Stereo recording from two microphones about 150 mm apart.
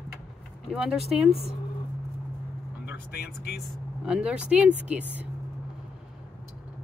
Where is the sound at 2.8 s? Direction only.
90° left.